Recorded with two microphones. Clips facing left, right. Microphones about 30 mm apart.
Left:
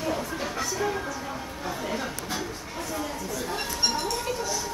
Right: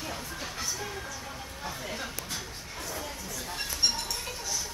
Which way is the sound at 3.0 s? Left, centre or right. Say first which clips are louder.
Left 7 dB; centre.